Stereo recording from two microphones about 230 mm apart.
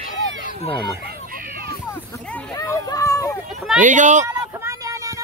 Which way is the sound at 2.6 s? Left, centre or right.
Centre.